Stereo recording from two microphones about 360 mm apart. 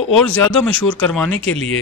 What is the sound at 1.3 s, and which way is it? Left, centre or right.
Speech, left.